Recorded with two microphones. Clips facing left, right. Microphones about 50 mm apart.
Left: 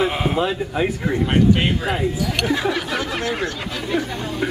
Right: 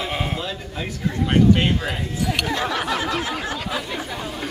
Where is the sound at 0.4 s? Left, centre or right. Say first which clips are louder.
Left 9 dB; left.